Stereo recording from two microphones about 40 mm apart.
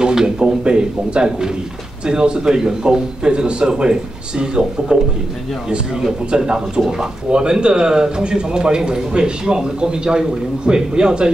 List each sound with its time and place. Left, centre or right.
0.0 s speech: centre
6.3 s speech: right